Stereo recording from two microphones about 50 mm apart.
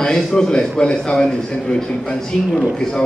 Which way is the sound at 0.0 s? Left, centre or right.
Centre.